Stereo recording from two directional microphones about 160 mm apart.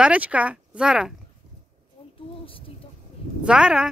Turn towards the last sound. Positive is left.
turn(degrees=-5)  # may be behind; listen again after turning